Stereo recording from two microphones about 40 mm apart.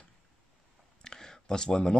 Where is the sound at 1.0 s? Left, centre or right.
Centre.